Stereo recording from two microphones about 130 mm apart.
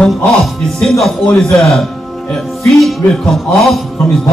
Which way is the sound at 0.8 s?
5° left (ahead or behind).